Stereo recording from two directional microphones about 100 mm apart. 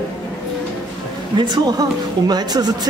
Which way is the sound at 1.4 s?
40° right (ahead or behind).